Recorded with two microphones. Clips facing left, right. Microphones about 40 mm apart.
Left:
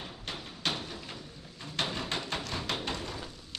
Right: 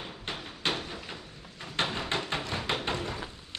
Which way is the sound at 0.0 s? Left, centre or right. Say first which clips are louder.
Right 2 dB; right.